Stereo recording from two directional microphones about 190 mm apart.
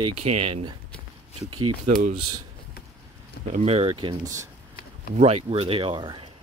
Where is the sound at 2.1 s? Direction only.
25° right (ahead or behind).